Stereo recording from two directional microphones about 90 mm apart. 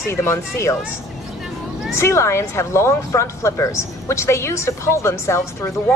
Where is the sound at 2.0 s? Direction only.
30° left (ahead or behind).